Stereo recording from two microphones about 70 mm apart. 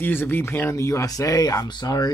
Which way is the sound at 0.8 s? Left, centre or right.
Left.